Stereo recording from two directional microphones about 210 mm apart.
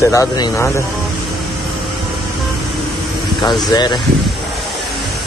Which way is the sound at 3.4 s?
20° left (ahead or behind).